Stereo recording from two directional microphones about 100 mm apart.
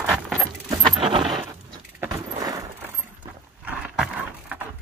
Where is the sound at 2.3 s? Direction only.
40° right (ahead or behind).